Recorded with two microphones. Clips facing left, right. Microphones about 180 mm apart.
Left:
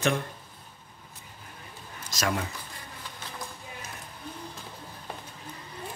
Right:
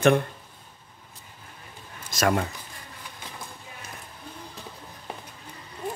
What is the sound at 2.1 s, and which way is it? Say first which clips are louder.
Speech: right 6 dB; 55° right (ahead or behind).